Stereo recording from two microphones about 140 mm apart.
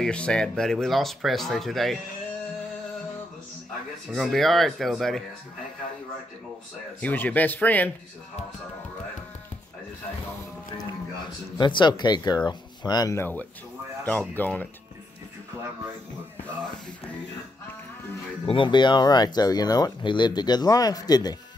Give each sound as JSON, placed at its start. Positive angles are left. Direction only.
{"t": 0.0, "sound": "speech", "side_deg": 5}
{"t": 4.1, "sound": "speech", "side_deg": 0}
{"t": 7.0, "sound": "speech", "side_deg": 10}
{"t": 10.8, "sound": "speech", "side_deg": 30}
{"t": 18.4, "sound": "speech", "side_deg": 35}